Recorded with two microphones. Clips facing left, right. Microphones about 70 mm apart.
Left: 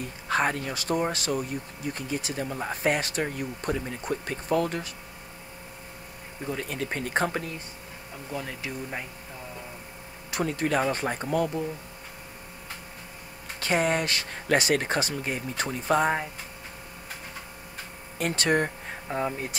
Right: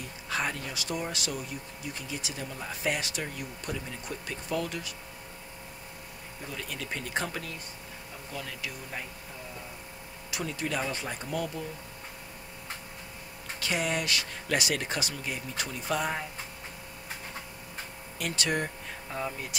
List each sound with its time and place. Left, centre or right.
0.3 s speech: left
6.5 s speech: left
8.3 s speech: left
10.3 s speech: left
13.6 s speech: left
18.2 s speech: left